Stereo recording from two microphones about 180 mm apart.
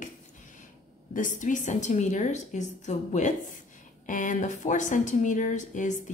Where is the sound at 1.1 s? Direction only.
45° left (ahead or behind).